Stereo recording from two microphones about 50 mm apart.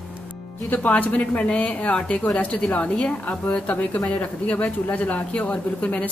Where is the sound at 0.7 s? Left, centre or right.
Left.